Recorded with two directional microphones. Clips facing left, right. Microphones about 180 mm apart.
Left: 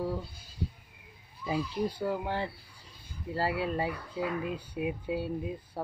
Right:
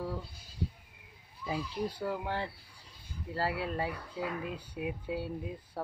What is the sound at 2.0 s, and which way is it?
Speech, 20° left (ahead or behind).